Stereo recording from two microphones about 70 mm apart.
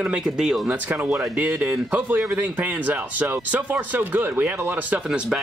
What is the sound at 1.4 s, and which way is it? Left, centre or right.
Speech, centre.